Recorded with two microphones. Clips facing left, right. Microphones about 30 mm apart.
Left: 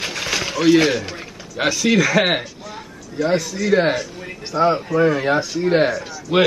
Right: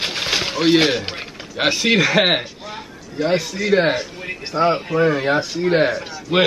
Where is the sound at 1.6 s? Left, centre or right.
Right.